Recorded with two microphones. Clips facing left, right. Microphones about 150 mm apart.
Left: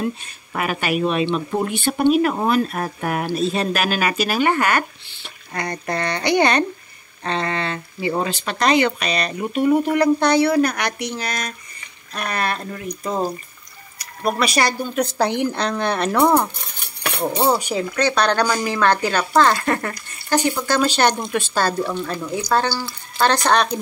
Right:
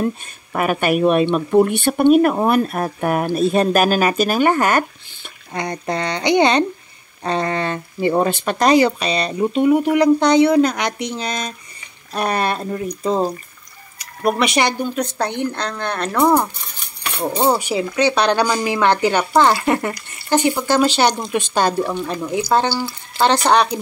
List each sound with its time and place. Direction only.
0.5 s speech: 50° right (ahead or behind)
2.8 s speech: 45° right (ahead or behind)
5.5 s speech: 20° right (ahead or behind)
7.2 s speech: 45° right (ahead or behind); by 9.7 s 25° right (ahead or behind)
9.7 s speech: 15° right (ahead or behind)
15.1 s speech: 5° left (ahead or behind)
17.2 s speech: 10° right (ahead or behind)